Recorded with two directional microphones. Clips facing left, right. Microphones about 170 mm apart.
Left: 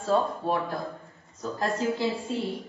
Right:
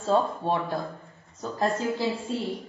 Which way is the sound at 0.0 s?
25° right (ahead or behind).